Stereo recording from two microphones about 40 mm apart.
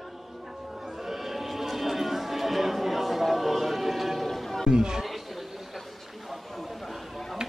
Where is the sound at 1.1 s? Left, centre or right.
Centre.